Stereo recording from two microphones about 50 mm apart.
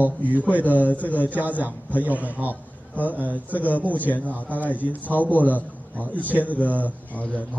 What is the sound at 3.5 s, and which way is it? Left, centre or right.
Speech, right.